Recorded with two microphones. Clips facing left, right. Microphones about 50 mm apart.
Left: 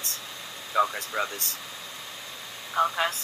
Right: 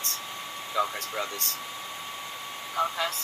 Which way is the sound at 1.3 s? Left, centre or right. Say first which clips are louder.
Right 2 dB; right.